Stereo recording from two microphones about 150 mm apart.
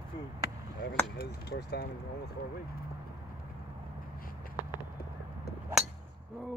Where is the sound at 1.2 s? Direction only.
90° left.